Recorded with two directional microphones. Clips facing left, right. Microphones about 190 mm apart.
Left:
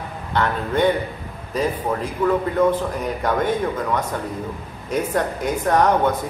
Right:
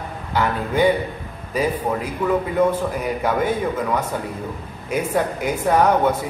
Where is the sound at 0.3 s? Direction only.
10° right (ahead or behind).